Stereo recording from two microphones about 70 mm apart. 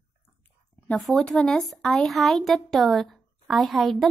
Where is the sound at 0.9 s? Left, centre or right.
Left.